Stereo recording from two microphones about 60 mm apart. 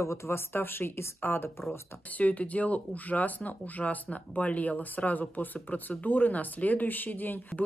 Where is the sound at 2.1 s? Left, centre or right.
Left.